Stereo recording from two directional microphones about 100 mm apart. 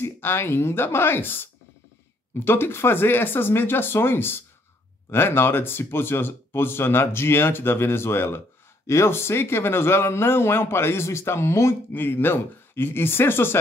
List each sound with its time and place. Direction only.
0.0 s speech: 25° left (ahead or behind)